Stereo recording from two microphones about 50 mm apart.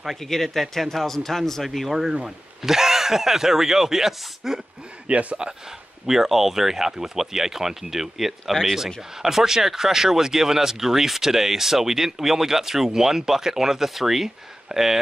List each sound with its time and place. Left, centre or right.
0.0 s speech: centre
5.0 s speech: right
6.0 s speech: centre